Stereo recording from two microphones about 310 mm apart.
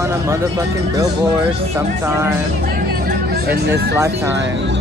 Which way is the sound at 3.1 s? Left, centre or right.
Right.